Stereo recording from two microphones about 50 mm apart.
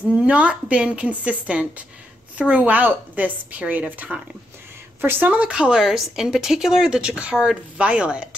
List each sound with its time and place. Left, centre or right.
0.1 s a woman's voice: right
5.0 s a woman's voice: right
5.3 s a woman's voice: right